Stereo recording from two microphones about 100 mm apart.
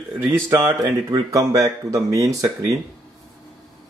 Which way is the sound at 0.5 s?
30° right (ahead or behind).